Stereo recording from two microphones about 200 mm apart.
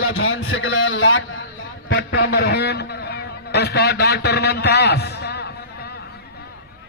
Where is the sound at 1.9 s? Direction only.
55° left (ahead or behind).